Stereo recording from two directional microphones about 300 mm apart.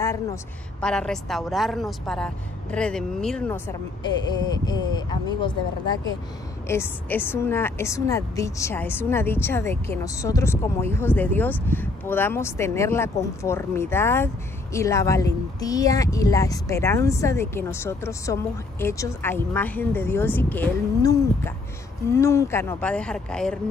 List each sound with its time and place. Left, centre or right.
0.0 s a woman's voice: centre
6.7 s a woman's voice: centre